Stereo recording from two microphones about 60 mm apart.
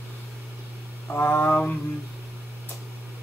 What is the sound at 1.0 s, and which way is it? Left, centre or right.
Speech, left.